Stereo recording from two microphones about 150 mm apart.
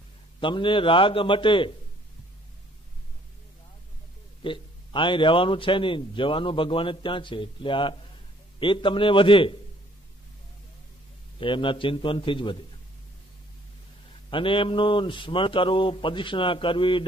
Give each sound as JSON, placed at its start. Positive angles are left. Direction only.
{"t": 0.4, "sound": "a man's voice", "side_deg": 35}
{"t": 4.4, "sound": "a man's voice", "side_deg": 35}
{"t": 11.3, "sound": "a man's voice", "side_deg": 35}
{"t": 14.3, "sound": "a man's voice", "side_deg": 35}